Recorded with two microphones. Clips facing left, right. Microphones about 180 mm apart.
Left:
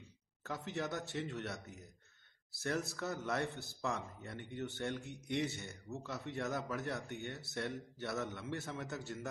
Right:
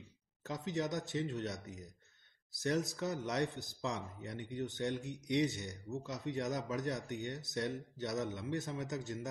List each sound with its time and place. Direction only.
0.4 s a man's voice: 20° right (ahead or behind)